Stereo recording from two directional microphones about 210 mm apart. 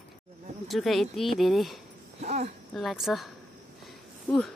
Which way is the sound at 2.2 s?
30° right (ahead or behind).